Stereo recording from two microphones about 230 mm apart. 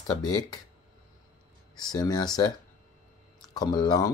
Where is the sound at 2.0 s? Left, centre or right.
Centre.